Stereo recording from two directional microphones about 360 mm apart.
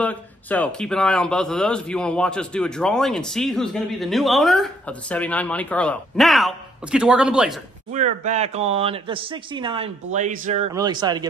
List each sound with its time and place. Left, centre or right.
0.0 s a sound: centre
0.7 s a man's voice: centre
7.9 s speech: centre